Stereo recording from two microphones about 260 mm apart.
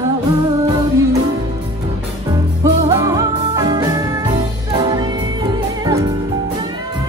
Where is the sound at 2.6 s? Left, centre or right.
Centre.